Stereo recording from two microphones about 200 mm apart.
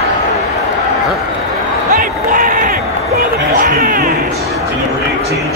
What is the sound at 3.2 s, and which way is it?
Speech, 45° right (ahead or behind).